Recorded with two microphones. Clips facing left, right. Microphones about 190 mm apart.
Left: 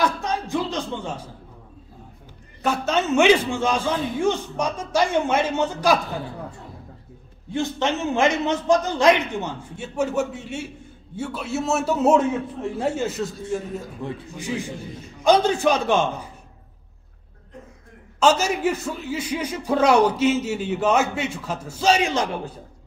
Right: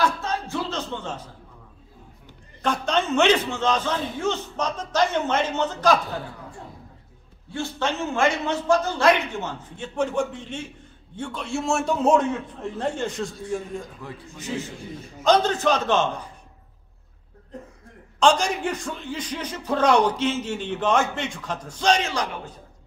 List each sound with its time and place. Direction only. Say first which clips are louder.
0.0 s music: left 1 dB; 15° left (ahead or behind)
2.6 s a man's voice: left 1 dB; 5° left (ahead or behind)
7.5 s a man's voice: left 3 dB; 20° left (ahead or behind)
15.2 s a man's voice: left 2 dB; 10° left (ahead or behind)
18.2 s a man's voice: left 1 dB; 5° left (ahead or behind)